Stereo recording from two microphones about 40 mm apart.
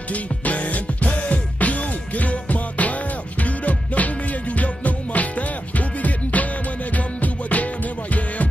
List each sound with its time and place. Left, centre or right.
0.1 s music: left